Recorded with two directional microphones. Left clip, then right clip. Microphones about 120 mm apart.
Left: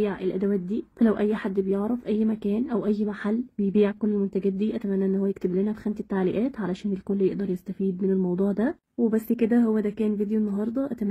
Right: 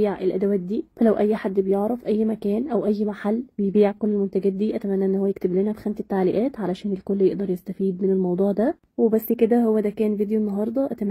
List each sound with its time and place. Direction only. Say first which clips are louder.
0.0 s a woman's voice: right 5 dB; 25° right (ahead or behind)